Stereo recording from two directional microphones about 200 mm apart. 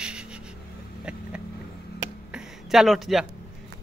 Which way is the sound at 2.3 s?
Centre (ahead or behind).